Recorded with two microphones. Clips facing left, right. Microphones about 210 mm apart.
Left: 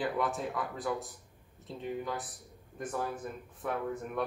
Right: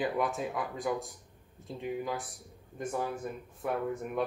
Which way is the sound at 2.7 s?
25° right (ahead or behind).